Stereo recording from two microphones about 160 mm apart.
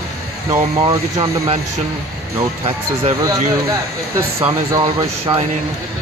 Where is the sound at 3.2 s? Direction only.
20° right (ahead or behind).